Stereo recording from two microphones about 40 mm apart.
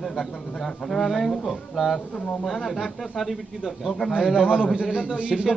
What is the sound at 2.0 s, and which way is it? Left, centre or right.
Speech, left.